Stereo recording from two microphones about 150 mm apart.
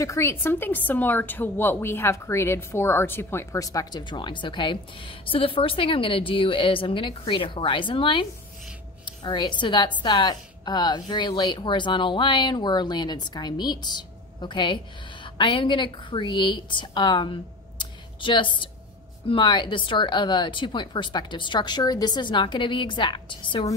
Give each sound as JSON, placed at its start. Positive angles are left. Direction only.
{"t": 0.0, "sound": "a woman's voice", "side_deg": 20}